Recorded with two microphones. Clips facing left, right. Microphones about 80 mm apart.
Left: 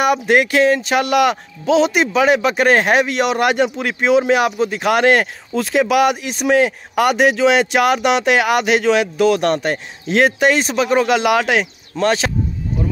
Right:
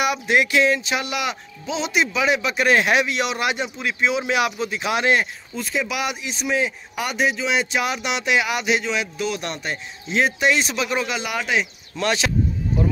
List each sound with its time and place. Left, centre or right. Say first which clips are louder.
0.0 s speech: left 5 dB; left
10.5 s speech: left 6 dB; left
11.1 s speech: left 10 dB; left
12.0 s speech: left 5 dB; left